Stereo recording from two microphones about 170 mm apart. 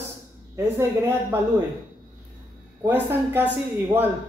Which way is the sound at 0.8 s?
15° right (ahead or behind).